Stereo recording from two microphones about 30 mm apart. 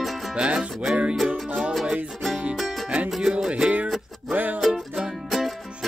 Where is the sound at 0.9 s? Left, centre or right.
Right.